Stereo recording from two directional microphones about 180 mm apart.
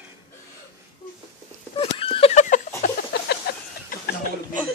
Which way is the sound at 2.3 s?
45° left (ahead or behind).